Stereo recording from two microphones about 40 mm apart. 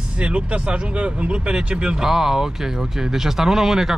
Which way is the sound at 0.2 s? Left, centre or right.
Right.